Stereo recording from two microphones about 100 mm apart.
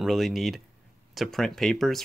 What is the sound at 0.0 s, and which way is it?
Speech, centre (ahead or behind).